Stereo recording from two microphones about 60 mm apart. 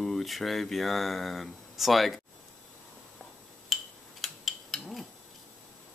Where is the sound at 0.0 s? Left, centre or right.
Centre.